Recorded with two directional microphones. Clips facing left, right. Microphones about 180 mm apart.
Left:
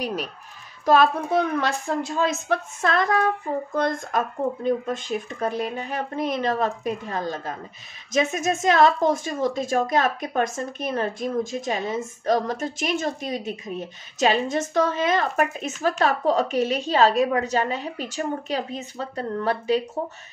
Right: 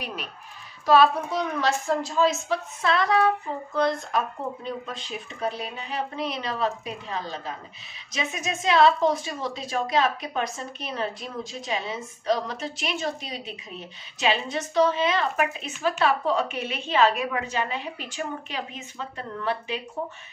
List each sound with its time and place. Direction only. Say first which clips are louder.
0.0 s a woman's voice: left 7 dB; 40° left (ahead or behind)
0.8 s a woman's voice: left 1 dB; 50° left (ahead or behind)